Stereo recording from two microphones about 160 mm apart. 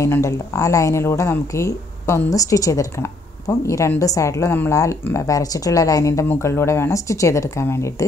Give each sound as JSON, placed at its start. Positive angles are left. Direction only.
{"t": 0.0, "sound": "a woman's voice", "side_deg": 20}